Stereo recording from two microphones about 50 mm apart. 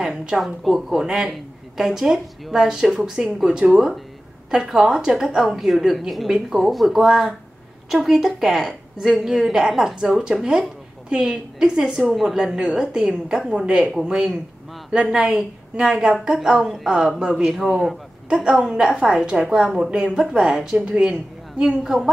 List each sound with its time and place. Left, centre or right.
0.0 s a sound: centre
0.7 s a woman's voice: centre
18.3 s a woman's voice: centre